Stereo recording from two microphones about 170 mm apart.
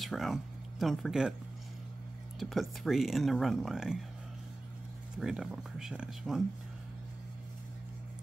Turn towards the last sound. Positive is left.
turn(degrees=-5)  # may be behind; listen again after turning